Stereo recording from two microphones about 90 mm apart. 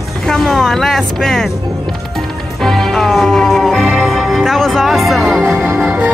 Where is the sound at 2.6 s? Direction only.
5° left (ahead or behind).